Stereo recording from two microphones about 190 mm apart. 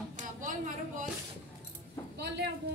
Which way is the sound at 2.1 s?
60° right (ahead or behind).